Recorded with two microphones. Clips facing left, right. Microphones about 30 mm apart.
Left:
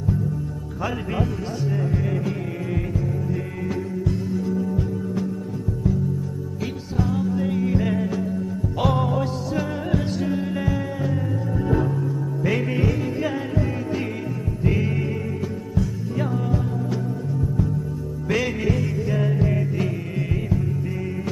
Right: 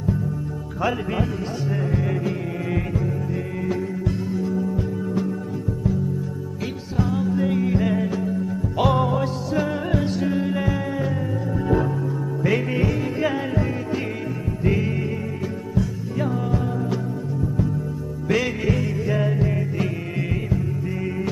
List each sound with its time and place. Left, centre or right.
1.7 s music: centre
7.0 s music: centre
14.7 s music: centre
16.2 s music: centre
18.3 s music: centre
18.7 s music: centre
19.3 s music: centre